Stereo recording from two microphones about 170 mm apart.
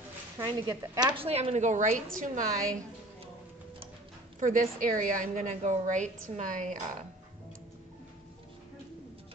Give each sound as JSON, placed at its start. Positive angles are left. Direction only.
{"t": 0.4, "sound": "a woman's voice", "side_deg": -20}
{"t": 1.1, "sound": "a woman's voice", "side_deg": -35}
{"t": 4.4, "sound": "a woman's voice", "side_deg": -50}